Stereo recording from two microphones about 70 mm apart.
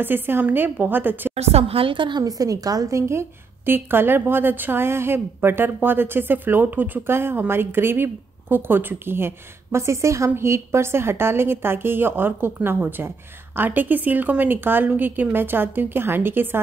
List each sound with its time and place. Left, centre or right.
0.0 s a woman's voice: right
2.0 s a woman's voice: right
3.0 s a woman's voice: right